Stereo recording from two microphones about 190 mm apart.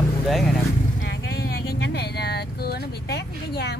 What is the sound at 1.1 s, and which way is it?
Vehicle, 55° left (ahead or behind).